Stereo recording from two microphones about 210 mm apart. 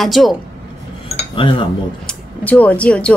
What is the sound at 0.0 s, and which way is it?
Speech, centre (ahead or behind).